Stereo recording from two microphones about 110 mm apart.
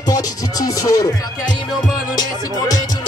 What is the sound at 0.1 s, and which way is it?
Music, 35° left (ahead or behind).